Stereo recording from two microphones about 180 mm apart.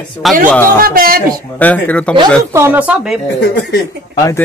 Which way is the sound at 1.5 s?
10° left (ahead or behind).